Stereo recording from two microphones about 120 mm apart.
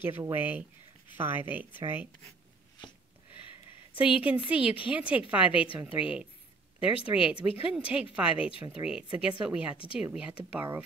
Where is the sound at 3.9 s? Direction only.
10° right (ahead or behind).